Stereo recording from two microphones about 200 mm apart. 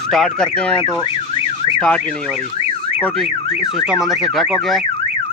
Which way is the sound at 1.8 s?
5° left (ahead or behind).